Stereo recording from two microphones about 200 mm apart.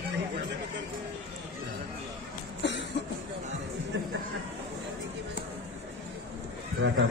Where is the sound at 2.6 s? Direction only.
60° left (ahead or behind).